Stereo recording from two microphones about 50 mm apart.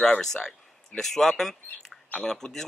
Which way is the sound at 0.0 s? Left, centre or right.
Centre.